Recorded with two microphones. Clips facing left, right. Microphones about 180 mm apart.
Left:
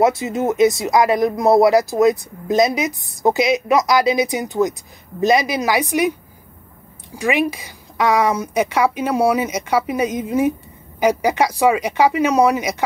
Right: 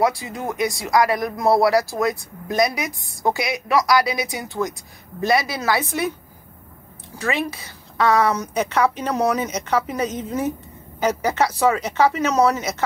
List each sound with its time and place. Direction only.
0.0 s a woman's voice: 25° left (ahead or behind)
7.2 s a woman's voice: 15° left (ahead or behind)